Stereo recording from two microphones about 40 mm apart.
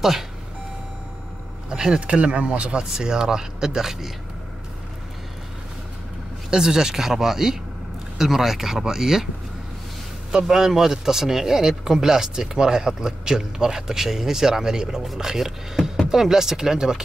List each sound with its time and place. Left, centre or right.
1.7 s speech: right
6.5 s a man's voice: centre
10.3 s a man's voice: centre